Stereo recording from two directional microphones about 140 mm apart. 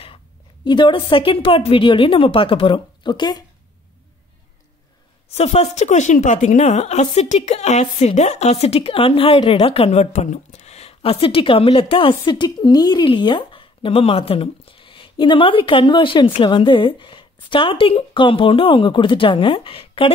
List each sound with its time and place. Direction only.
0.7 s speech: 35° left (ahead or behind)
5.3 s speech: 50° left (ahead or behind)